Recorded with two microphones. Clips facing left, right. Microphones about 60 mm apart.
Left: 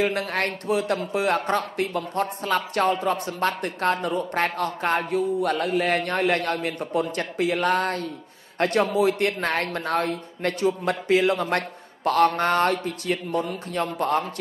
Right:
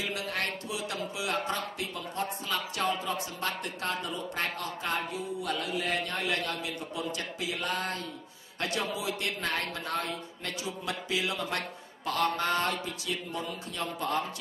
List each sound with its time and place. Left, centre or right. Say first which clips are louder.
0.0 s speech: left 9 dB; left